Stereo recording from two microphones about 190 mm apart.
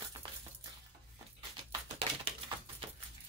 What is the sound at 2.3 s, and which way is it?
Typewriter, 30° right (ahead or behind).